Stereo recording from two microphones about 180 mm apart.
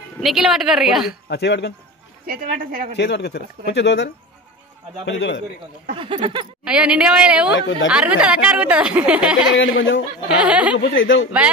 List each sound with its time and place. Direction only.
0.2 s a woman's voice: centre (ahead or behind)
1.3 s speech: 70° left (ahead or behind)
2.2 s a woman's voice: 55° right (ahead or behind)
3.0 s speech: 75° left (ahead or behind)
5.0 s speech: 90° left
5.9 s speech: 30° right (ahead or behind)
6.6 s a woman's voice: 5° right (ahead or behind)
9.6 s speech: 90° left
10.2 s a woman's voice: 5° right (ahead or behind)
10.8 s speech: 90° left